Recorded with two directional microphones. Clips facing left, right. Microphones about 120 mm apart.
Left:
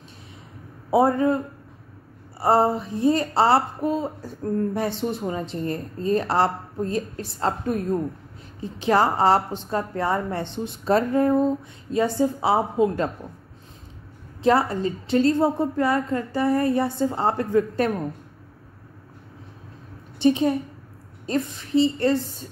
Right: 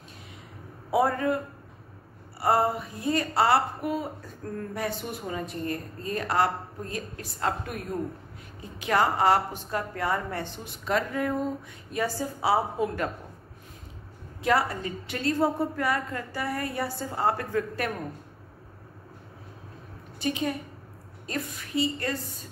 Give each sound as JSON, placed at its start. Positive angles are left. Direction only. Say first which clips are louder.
{"t": 0.8, "sound": "a woman's voice", "louder": "left 5 dB", "side_deg": 25}
{"t": 2.4, "sound": "a woman's voice", "louder": "left 5 dB", "side_deg": 30}
{"t": 14.4, "sound": "a woman's voice", "louder": "left 5 dB", "side_deg": 30}
{"t": 20.2, "sound": "a woman's voice", "louder": "left 10 dB", "side_deg": 30}